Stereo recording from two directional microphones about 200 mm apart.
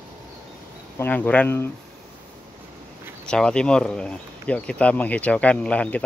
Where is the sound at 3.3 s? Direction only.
5° left (ahead or behind).